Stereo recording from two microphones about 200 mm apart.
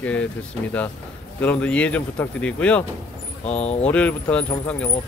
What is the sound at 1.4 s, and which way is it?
Speech, 5° left (ahead or behind).